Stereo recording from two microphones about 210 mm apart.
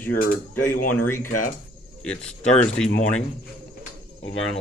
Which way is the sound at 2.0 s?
5° left (ahead or behind).